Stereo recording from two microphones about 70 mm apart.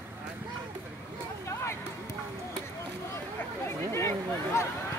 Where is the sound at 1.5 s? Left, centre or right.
Left.